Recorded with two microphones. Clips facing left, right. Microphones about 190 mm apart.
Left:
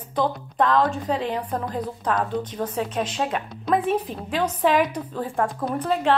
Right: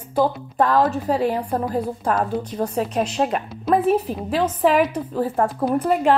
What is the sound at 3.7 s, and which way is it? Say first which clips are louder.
A woman's voice: right 4 dB; 5° right (ahead or behind).